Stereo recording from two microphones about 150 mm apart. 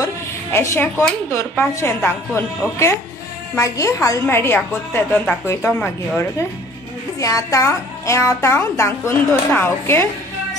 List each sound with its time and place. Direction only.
0.0 s a woman's voice: 15° left (ahead or behind)